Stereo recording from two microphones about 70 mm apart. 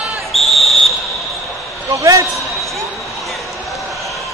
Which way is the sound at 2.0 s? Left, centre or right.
Right.